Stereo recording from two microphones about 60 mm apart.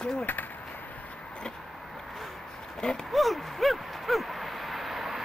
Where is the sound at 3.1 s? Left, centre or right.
Centre.